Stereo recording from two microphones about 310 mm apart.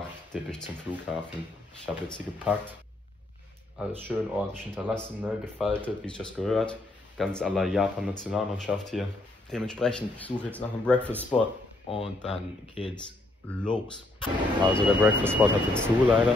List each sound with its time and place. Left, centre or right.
0.3 s speech: centre
4.0 s speech: centre
11.9 s speech: centre
14.2 s speech: centre